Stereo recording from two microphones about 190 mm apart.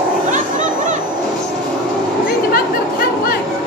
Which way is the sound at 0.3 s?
40° right (ahead or behind).